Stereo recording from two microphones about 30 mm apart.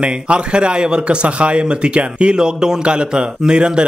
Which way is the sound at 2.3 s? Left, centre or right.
Right.